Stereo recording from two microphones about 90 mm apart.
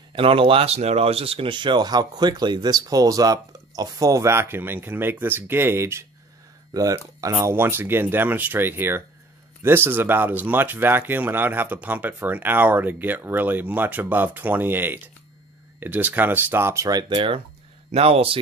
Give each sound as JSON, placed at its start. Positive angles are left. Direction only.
{"t": 0.1, "sound": "speech", "side_deg": -85}
{"t": 6.7, "sound": "speech", "side_deg": -40}
{"t": 16.8, "sound": "speech", "side_deg": -45}
{"t": 17.9, "sound": "speech", "side_deg": -90}